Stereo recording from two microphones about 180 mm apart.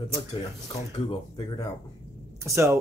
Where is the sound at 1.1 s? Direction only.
25° left (ahead or behind).